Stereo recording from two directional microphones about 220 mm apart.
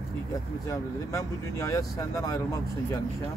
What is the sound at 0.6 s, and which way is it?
Speech, 15° left (ahead or behind).